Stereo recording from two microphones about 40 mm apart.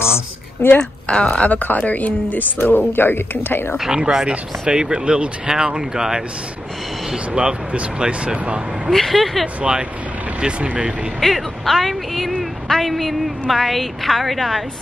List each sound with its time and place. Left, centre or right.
0.0 s a sound: left
1.0 s speech: left
1.8 s speech: left
2.6 s speech: left
3.9 s speech: centre
8.9 s a woman's voice: centre
9.6 s speech: right
11.1 s a woman's voice: centre